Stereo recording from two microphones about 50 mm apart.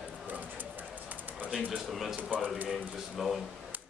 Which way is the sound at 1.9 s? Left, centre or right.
Centre.